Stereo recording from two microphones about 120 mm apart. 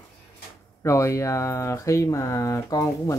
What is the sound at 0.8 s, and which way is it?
Speech, 25° left (ahead or behind).